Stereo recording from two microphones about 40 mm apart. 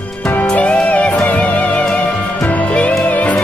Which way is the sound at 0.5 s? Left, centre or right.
Left.